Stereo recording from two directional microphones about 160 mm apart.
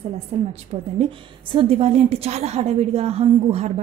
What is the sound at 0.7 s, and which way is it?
A woman's voice, 35° right (ahead or behind).